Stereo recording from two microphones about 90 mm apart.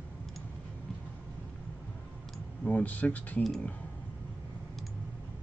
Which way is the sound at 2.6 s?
15° left (ahead or behind).